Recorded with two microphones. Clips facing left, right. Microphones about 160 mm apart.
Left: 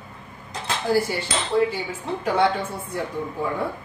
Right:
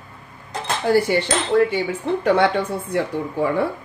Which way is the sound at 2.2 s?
70° right (ahead or behind).